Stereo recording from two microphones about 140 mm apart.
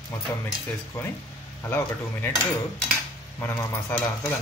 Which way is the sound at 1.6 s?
15° left (ahead or behind).